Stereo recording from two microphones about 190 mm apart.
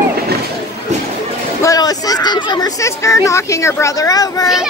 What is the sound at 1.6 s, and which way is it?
Speech, 20° left (ahead or behind).